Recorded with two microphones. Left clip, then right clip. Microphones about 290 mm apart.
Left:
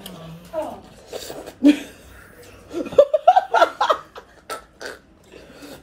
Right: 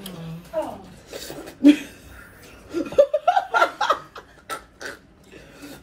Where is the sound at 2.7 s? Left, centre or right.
Centre.